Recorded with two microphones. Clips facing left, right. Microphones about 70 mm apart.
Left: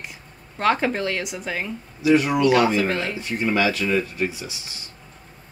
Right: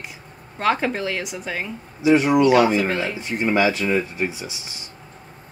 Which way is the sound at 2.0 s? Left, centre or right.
Right.